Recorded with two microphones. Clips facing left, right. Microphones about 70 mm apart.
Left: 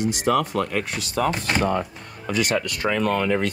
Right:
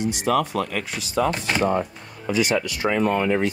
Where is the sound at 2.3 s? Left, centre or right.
Left.